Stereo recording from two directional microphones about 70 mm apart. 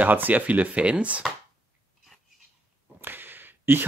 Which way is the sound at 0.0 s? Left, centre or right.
Right.